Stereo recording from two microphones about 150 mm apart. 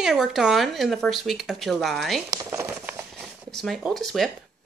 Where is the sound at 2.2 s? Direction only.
20° right (ahead or behind).